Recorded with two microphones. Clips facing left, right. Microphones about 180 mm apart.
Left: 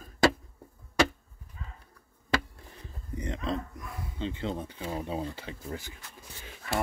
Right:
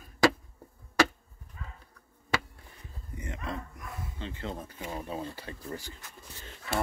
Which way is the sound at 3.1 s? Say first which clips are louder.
Left 6 dB; 35° left (ahead or behind).